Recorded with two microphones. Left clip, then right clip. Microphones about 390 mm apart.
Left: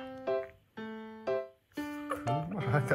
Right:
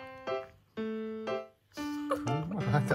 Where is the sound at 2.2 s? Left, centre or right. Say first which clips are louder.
Left 1 dB; centre.